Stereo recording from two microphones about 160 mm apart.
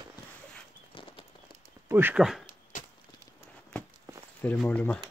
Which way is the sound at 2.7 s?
55° left (ahead or behind).